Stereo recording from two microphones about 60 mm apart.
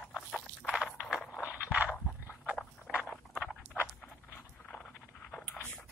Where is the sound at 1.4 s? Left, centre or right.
Right.